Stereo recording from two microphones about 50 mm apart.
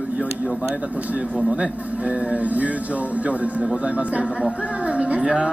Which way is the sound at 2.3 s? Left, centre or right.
Right.